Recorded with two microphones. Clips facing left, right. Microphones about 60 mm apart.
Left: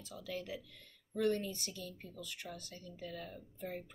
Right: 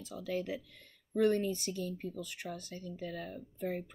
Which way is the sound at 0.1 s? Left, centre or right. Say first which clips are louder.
Right 6 dB; right.